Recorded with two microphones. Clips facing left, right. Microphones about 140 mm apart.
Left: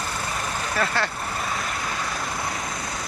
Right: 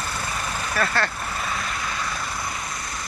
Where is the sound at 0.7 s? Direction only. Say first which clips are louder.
Right 1 dB; 15° left (ahead or behind).